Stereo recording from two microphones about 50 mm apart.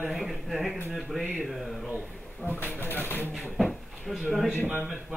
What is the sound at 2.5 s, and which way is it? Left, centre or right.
Speech, left.